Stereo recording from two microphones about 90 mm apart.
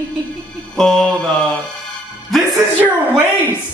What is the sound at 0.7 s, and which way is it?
Mantra, 5° left (ahead or behind).